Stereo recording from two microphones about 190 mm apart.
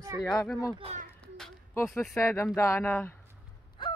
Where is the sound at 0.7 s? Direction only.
30° right (ahead or behind).